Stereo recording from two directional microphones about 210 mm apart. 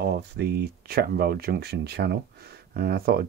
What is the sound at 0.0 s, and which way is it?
Speech, 50° right (ahead or behind).